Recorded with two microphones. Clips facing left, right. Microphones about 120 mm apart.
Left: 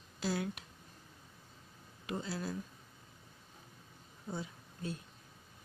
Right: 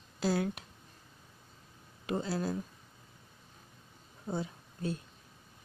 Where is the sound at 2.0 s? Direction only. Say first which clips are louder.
Right 6 dB; 45° right (ahead or behind).